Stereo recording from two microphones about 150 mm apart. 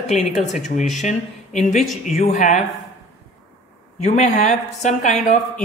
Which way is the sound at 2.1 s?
55° left (ahead or behind).